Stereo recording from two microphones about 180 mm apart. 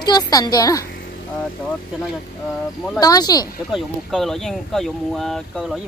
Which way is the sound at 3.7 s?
Centre (ahead or behind).